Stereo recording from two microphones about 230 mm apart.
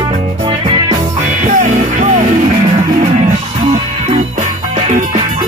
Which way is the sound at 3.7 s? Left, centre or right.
Right.